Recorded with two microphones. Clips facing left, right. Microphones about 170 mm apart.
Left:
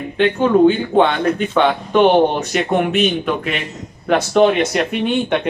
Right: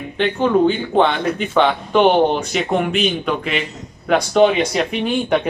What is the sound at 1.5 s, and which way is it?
Speech, centre (ahead or behind).